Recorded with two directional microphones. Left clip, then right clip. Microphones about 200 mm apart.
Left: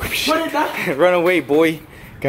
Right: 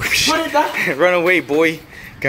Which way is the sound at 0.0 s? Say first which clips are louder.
Right 3 dB; centre (ahead or behind).